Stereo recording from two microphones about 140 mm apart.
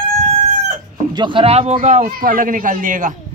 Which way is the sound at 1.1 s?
35° right (ahead or behind).